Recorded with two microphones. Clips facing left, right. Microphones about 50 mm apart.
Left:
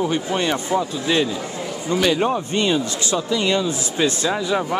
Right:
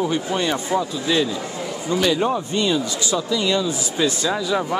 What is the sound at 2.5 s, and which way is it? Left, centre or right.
Speech, left.